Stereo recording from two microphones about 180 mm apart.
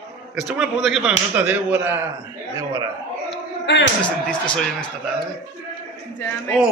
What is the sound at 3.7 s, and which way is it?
Speech, 80° left.